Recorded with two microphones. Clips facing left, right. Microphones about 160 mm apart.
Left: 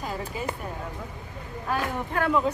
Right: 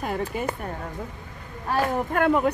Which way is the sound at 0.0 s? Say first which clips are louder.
Right 4 dB; 55° right (ahead or behind).